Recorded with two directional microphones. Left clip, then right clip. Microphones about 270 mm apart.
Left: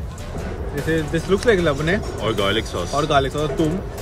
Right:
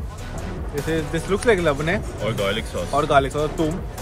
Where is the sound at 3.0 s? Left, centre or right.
Right.